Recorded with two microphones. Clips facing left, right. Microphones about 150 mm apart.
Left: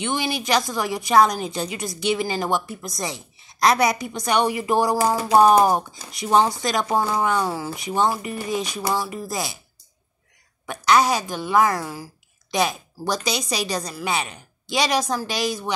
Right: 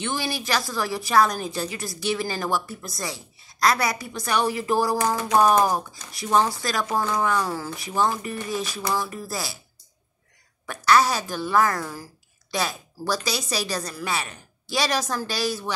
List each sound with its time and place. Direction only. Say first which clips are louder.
0.0 s a woman's voice: left 3 dB; 20° left (ahead or behind)
5.3 s a woman's voice: left 4 dB; 30° left (ahead or behind)
10.7 s a woman's voice: left 1 dB; 15° left (ahead or behind)